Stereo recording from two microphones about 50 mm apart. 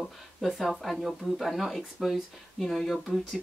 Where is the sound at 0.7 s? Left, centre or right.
Centre.